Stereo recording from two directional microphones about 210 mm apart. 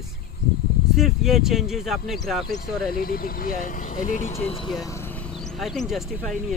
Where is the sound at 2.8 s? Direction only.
45° left (ahead or behind); by 4.7 s 25° left (ahead or behind).